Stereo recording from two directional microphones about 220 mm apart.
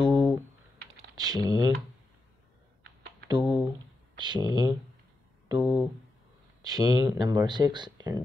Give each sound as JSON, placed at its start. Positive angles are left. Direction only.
{"t": 0.0, "sound": "computer keyboard", "side_deg": -20}
{"t": 1.1, "sound": "speech", "side_deg": -15}
{"t": 3.3, "sound": "speech", "side_deg": -20}
{"t": 5.6, "sound": "speech", "side_deg": -5}
{"t": 6.6, "sound": "speech", "side_deg": -20}